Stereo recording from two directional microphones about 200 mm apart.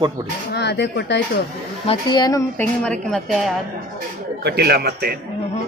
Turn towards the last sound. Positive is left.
turn(degrees=-50)  # may be behind; listen again after turning